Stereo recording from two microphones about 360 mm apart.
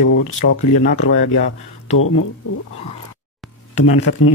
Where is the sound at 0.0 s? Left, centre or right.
Left.